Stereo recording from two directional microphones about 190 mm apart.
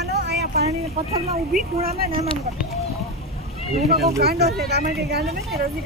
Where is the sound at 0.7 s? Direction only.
35° right (ahead or behind).